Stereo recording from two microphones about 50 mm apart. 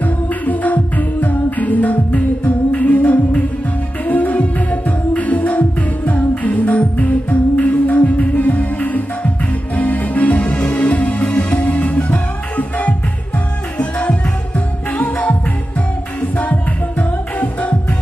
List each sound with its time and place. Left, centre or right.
0.0 s music: left